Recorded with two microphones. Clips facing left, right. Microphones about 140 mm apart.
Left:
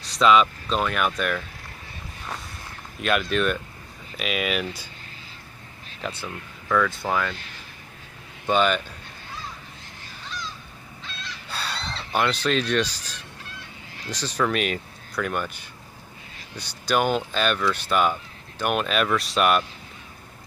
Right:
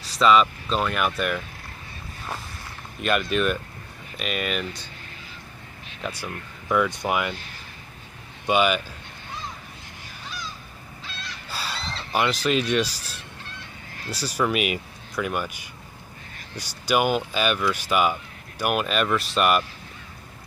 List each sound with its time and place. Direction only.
0.0 s speech: centre (ahead or behind)
3.0 s speech: centre (ahead or behind)
6.2 s speech: 15° right (ahead or behind)
8.5 s speech: 10° right (ahead or behind)
11.5 s speech: 5° right (ahead or behind)